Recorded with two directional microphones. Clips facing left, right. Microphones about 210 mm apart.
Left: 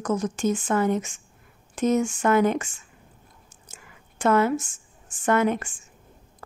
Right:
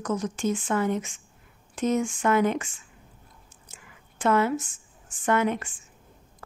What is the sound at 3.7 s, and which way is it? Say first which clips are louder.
Whispering: left 2 dB; 45° left (ahead or behind).